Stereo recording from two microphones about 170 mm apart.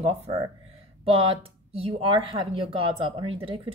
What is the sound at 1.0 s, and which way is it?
Speech, 35° right (ahead or behind).